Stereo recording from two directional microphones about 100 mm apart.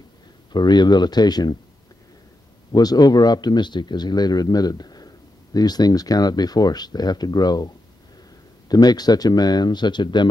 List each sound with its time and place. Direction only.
0.5 s speech: 45° left (ahead or behind)
2.7 s speech: 40° left (ahead or behind)